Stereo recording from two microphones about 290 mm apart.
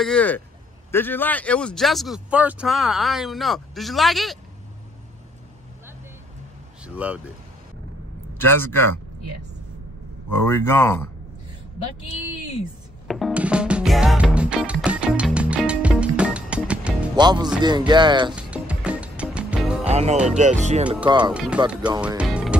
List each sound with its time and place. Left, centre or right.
0.0 s speech: centre
6.8 s speech: centre
8.4 s speech: centre
10.3 s speech: centre
13.1 s music: centre
18.3 s music: centre
19.9 s speech: right
21.2 s speech: centre
21.6 s music: centre